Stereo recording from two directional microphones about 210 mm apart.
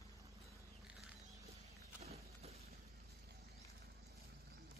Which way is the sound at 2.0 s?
30° right (ahead or behind).